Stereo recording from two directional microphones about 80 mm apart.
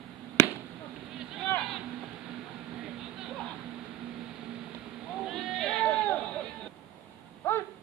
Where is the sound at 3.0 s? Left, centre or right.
Centre.